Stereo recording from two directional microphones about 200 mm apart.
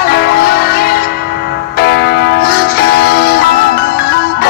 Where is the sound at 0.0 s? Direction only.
50° left (ahead or behind).